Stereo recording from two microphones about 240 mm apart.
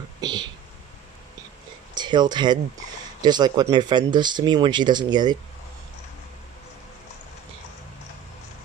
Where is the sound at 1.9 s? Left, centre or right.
Centre.